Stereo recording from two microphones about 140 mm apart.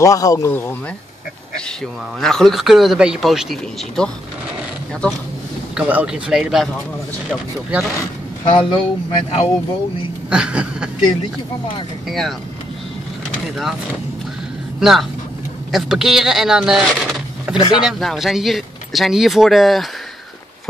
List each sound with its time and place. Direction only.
0.0 s speech: 25° left (ahead or behind)
0.5 s speech: 15° left (ahead or behind)
2.1 s speech: 5° left (ahead or behind)
5.8 s speech: 10° right (ahead or behind)
8.5 s speech: 35° left (ahead or behind)
10.3 s speech: 10° right (ahead or behind)
12.1 s speech: centre (ahead or behind)
14.8 s speech: centre (ahead or behind)
17.6 s speech: 35° left (ahead or behind)
17.8 s speech: centre (ahead or behind)